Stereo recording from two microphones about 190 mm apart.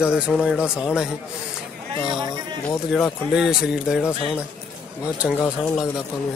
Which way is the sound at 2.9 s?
Centre (ahead or behind).